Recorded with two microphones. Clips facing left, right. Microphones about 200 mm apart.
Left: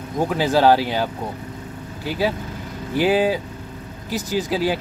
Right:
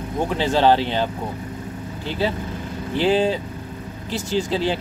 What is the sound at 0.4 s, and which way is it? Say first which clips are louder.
Speech: left 1 dB; 10° left (ahead or behind).